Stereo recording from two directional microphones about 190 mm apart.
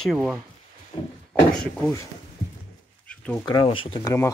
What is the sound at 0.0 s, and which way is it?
Speech, centre (ahead or behind).